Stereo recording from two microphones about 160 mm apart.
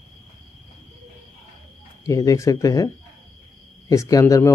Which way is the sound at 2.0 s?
20° left (ahead or behind).